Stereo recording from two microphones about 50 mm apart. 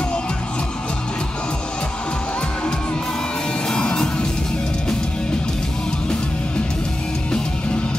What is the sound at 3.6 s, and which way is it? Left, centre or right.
Music, centre.